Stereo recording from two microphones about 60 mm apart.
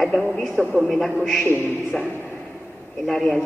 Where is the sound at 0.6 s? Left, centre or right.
Centre.